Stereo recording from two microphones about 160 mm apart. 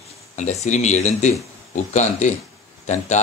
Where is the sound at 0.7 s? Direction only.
45° left (ahead or behind).